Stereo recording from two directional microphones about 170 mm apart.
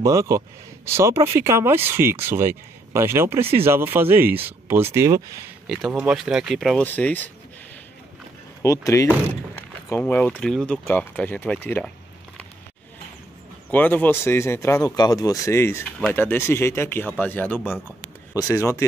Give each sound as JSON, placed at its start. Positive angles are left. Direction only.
{"t": 0.0, "sound": "speech", "side_deg": -20}
{"t": 5.7, "sound": "speech", "side_deg": 0}
{"t": 8.6, "sound": "speech", "side_deg": 15}
{"t": 9.8, "sound": "speech", "side_deg": 15}
{"t": 13.7, "sound": "speech", "side_deg": 10}